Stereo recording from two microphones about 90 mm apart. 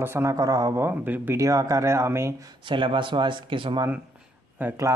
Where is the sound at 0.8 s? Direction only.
20° right (ahead or behind).